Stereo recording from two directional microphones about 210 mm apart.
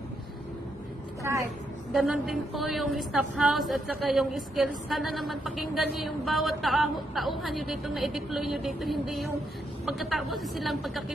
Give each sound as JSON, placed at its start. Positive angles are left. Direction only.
{"t": 1.9, "sound": "a woman's voice", "side_deg": 0}